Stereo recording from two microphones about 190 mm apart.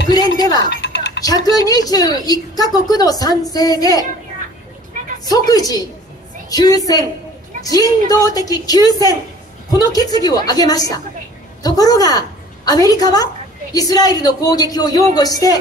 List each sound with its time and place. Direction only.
0.7 s typing: 65° left (ahead or behind)
1.2 s a woman's voice: 20° left (ahead or behind)
5.2 s a woman's voice: 20° left (ahead or behind)